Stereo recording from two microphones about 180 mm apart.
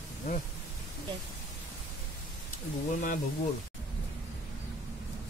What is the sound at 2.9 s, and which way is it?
Speech, 45° left (ahead or behind).